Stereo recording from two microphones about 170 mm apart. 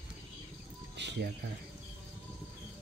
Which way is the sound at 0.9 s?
90° right.